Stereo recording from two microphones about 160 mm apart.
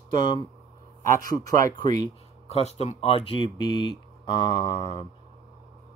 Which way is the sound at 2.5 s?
40° left (ahead or behind).